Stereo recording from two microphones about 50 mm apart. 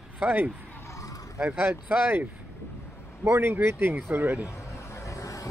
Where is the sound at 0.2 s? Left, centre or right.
Right.